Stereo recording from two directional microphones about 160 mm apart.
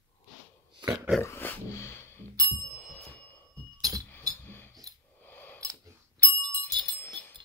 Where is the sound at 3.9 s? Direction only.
20° right (ahead or behind).